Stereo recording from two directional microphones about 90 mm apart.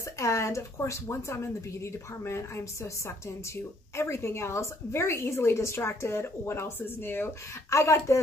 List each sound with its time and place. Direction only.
0.2 s a woman's voice: 35° left (ahead or behind)